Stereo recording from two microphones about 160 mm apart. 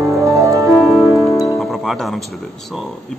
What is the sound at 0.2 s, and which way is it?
Music, 20° right (ahead or behind).